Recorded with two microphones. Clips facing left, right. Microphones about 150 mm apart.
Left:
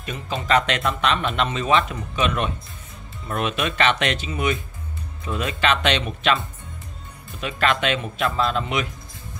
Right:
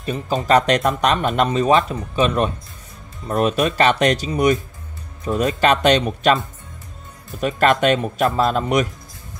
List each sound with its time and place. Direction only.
0.0 s speech: 35° right (ahead or behind)